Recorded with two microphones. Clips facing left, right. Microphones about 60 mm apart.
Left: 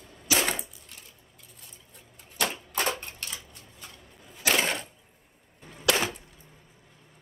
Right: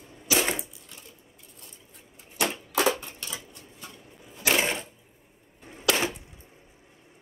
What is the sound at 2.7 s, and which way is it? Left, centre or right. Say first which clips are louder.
Crushing: right 6 dB; right.